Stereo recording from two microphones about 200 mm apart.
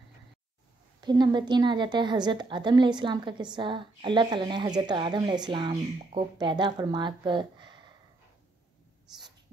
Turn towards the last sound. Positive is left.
turn(degrees=-25)  # may be behind; listen again after turning